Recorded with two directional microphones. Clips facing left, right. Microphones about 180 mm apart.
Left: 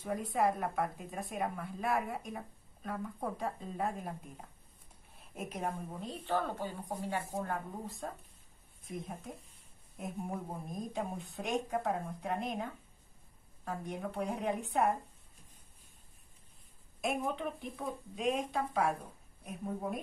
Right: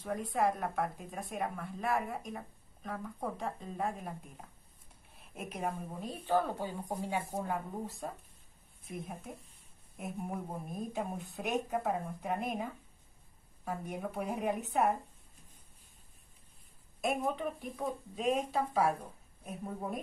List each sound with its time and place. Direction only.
0.0 s a woman's voice: centre (ahead or behind)
6.2 s a woman's voice: 10° right (ahead or behind)
17.0 s a woman's voice: centre (ahead or behind)